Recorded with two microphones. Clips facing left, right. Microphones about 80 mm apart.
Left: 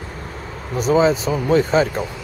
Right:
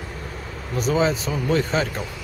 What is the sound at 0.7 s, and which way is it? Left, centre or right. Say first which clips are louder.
Speech: left 5 dB; centre.